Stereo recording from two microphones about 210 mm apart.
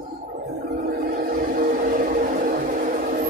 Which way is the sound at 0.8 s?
45° right (ahead or behind).